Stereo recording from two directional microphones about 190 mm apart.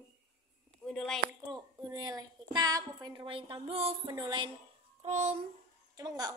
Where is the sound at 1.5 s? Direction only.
20° right (ahead or behind).